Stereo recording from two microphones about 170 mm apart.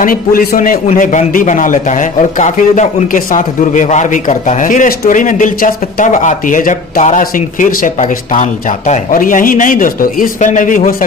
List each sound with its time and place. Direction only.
0.0 s a man's voice: 55° left (ahead or behind)